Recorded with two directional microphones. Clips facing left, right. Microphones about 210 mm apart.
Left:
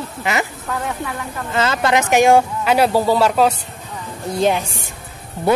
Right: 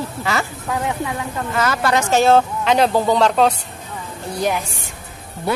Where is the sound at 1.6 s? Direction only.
25° left (ahead or behind); by 3.6 s 5° left (ahead or behind).